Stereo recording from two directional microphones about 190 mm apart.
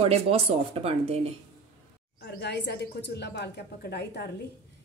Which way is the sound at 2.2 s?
60° left (ahead or behind).